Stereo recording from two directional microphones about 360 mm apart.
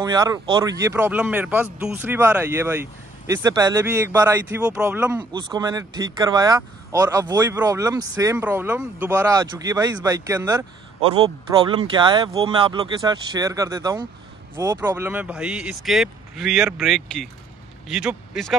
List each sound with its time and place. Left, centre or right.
0.0 s speech: centre